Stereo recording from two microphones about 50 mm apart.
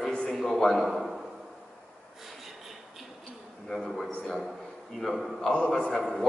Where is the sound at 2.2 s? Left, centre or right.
Centre.